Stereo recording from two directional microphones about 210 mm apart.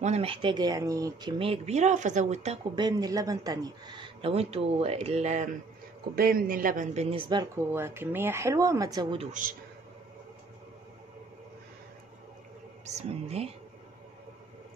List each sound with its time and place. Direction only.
0.0 s speech: 30° right (ahead or behind)
2.7 s speech: 20° right (ahead or behind)
12.8 s speech: 30° right (ahead or behind)